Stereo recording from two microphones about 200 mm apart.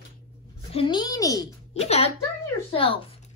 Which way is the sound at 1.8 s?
30° left (ahead or behind).